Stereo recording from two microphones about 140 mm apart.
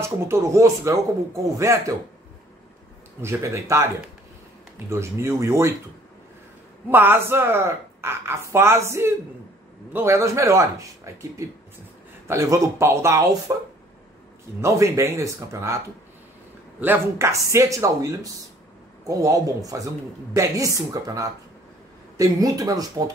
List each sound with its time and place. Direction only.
0.0 s a man's voice: 20° right (ahead or behind)
3.2 s a man's voice: 20° right (ahead or behind)
6.9 s a man's voice: 15° right (ahead or behind)
16.8 s a man's voice: 15° right (ahead or behind)